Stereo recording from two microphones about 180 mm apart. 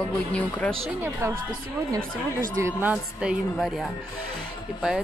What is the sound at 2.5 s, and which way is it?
Speech, 10° right (ahead or behind).